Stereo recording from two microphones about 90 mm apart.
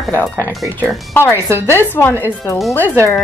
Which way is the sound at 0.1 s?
20° left (ahead or behind).